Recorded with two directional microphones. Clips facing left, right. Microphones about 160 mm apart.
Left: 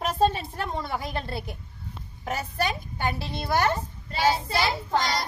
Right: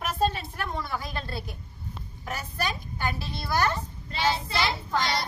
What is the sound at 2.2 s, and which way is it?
A woman's voice, 25° left (ahead or behind).